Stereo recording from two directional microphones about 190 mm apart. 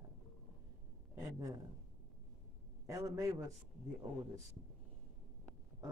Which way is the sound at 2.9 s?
15° right (ahead or behind).